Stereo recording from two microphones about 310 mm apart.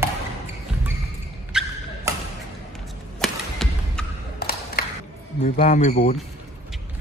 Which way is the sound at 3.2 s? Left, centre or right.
Centre.